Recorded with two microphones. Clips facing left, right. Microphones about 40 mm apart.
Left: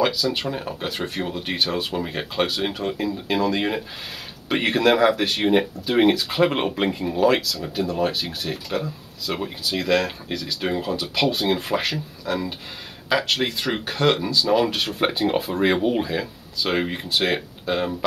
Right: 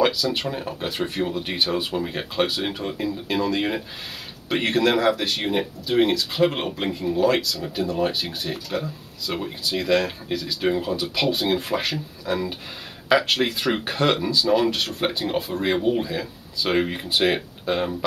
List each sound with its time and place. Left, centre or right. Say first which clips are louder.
0.0 s speech: even; centre
16.6 s speech: right 1 dB; centre